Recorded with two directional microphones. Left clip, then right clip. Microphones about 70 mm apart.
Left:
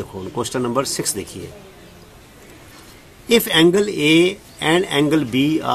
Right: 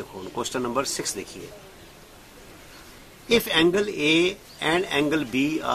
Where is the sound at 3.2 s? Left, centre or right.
Left.